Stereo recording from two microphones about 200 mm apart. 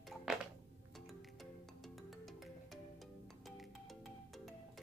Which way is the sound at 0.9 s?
Centre (ahead or behind).